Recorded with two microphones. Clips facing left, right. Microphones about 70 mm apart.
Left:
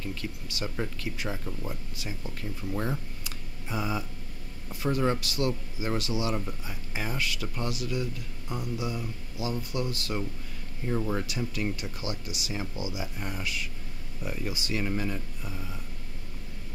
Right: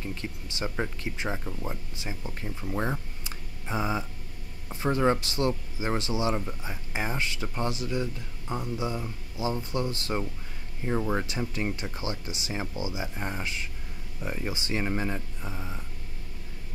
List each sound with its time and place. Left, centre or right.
0.0 s speech: right